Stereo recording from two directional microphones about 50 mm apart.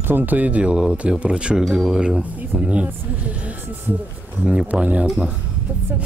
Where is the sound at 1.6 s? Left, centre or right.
Centre.